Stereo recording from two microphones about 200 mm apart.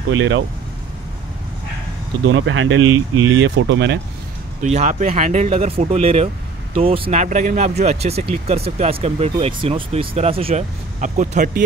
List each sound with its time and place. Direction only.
0.1 s speech: 70° right (ahead or behind)
2.2 s speech: 75° right (ahead or behind)
4.6 s speech: 35° right (ahead or behind)